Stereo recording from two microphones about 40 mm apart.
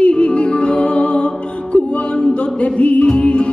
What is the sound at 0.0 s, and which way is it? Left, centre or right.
Music, left.